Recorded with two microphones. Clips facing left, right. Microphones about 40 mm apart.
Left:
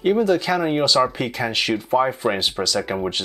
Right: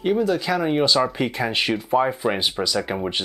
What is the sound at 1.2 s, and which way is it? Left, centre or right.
Speech, centre.